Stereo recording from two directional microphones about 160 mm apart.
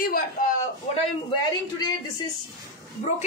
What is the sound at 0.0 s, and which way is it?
Speech, 65° left (ahead or behind).